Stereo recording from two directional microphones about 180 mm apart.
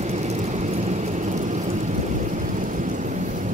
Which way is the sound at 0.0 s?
40° right (ahead or behind).